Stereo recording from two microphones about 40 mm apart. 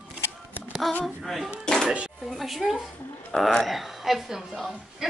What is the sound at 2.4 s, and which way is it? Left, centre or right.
Speech, centre.